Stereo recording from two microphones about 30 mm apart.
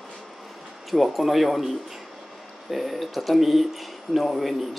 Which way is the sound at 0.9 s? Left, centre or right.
Centre.